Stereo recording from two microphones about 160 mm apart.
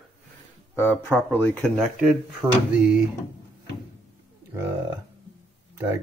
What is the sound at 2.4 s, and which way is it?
Speech, 15° right (ahead or behind).